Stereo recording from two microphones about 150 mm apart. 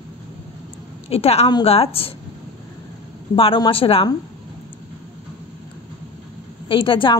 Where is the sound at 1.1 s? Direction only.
45° left (ahead or behind).